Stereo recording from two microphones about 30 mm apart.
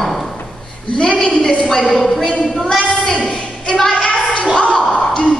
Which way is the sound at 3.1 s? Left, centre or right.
Left.